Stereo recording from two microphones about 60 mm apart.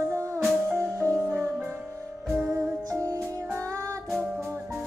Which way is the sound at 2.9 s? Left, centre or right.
Right.